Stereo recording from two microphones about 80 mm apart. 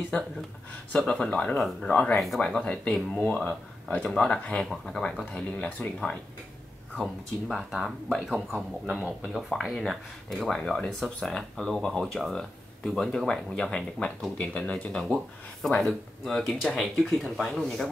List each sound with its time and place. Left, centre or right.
0.9 s speech: centre
2.1 s speech: centre
7.0 s speech: centre